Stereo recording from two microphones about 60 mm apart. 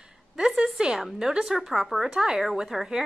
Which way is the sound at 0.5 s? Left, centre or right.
Centre.